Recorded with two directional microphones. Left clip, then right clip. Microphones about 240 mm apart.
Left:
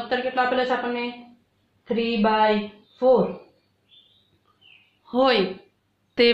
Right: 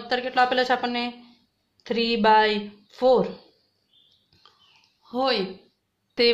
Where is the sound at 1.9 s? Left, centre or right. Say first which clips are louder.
Right 3 dB; right.